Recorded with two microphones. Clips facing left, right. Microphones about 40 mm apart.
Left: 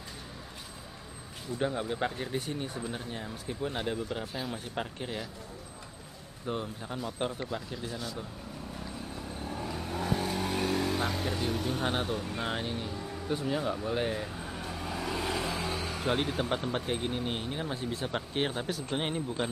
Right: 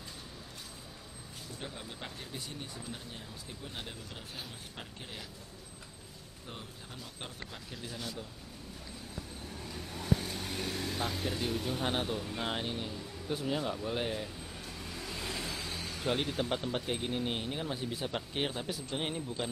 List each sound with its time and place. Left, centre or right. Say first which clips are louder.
1.8 s speech: left 12 dB; left
6.5 s speech: left 12 dB; left
9.6 s vehicle: left 8 dB; left
10.5 s speech: left 7 dB; centre
14.5 s vehicle: left 7 dB; left
16.0 s speech: left 2 dB; centre
18.9 s speech: left 4 dB; centre